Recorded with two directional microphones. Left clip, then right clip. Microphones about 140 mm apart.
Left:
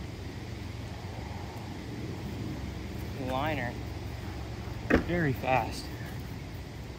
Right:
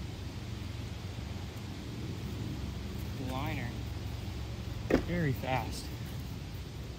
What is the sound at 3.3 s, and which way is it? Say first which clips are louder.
Vehicle: left 8 dB; 30° right (ahead or behind).